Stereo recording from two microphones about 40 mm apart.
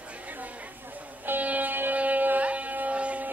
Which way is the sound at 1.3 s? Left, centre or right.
Right.